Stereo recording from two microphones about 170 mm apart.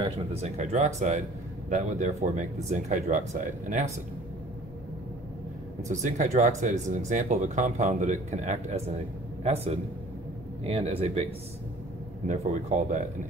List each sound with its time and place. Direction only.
0.3 s speech: 40° right (ahead or behind)
5.9 s speech: 45° right (ahead or behind)
12.3 s speech: 45° right (ahead or behind)